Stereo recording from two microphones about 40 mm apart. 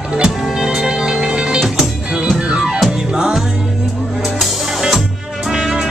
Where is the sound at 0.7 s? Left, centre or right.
Centre.